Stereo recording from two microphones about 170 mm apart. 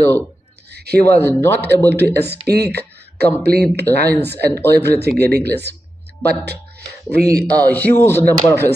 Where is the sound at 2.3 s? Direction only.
75° right (ahead or behind).